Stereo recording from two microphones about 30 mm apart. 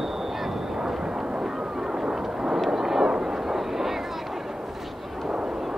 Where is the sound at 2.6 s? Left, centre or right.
Centre.